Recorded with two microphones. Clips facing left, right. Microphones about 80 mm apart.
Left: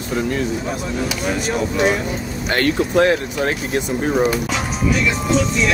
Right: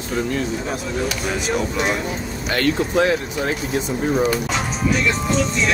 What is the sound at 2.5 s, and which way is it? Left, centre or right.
Speech, left.